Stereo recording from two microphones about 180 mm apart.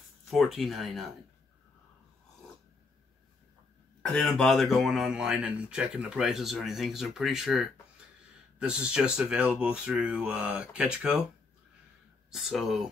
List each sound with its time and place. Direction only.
0.3 s speech: centre (ahead or behind)
4.0 s speech: 5° left (ahead or behind)
12.3 s speech: centre (ahead or behind)